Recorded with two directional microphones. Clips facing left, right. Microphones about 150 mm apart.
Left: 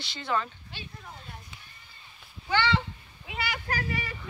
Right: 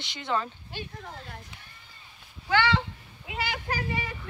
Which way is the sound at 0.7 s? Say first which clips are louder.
Right 6 dB; 55° right (ahead or behind).